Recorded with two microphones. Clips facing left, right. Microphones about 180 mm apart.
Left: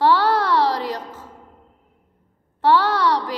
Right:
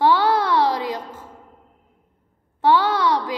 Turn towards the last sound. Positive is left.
turn(degrees=-10)  # may be behind; listen again after turning